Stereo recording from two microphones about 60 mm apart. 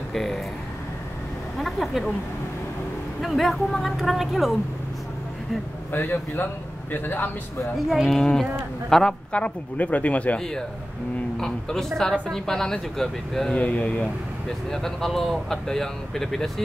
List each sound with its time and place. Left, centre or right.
0.1 s speech: centre
1.6 s speech: centre
3.2 s speech: centre
5.9 s speech: left
7.9 s speech: centre
8.2 s speech: centre
9.3 s speech: left
11.3 s speech: centre
13.6 s speech: left
14.7 s speech: centre